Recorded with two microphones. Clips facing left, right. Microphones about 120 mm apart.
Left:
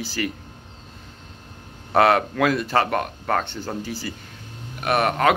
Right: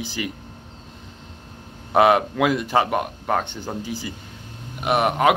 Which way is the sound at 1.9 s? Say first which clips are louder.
Right 1 dB; 15° right (ahead or behind).